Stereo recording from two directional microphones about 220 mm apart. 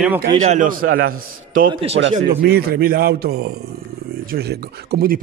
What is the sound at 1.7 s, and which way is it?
Speech, 25° right (ahead or behind).